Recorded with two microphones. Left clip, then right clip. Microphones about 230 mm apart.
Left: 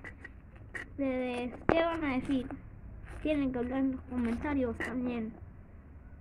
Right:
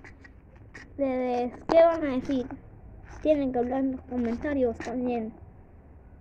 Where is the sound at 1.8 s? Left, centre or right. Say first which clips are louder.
Right 10 dB; centre.